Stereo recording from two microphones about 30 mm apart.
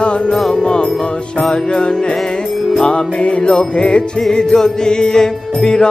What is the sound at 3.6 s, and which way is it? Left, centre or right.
Music, left.